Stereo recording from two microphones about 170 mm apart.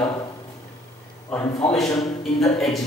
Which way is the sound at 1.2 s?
15° left (ahead or behind).